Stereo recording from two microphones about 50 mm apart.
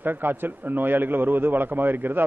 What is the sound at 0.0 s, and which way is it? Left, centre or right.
A man's voice, right.